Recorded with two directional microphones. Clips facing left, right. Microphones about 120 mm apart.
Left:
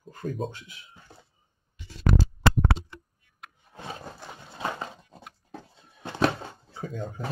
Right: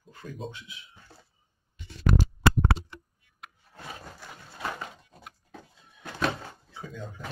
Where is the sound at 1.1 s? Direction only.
20° left (ahead or behind).